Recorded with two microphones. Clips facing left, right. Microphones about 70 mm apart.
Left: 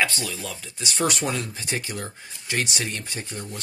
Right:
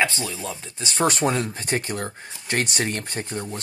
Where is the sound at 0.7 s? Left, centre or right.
Right.